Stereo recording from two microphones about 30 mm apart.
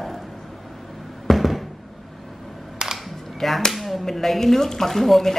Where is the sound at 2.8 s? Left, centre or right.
Right.